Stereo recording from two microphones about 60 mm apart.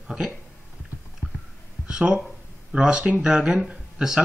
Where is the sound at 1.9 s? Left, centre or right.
Centre.